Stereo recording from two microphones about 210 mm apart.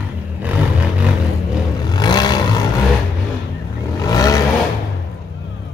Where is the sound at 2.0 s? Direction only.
20° left (ahead or behind).